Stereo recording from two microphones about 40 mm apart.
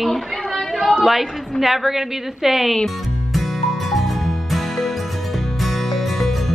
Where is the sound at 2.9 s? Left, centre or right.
Centre.